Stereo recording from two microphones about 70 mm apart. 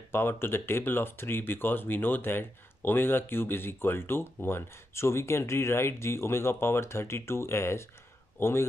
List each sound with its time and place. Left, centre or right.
0.1 s speech: left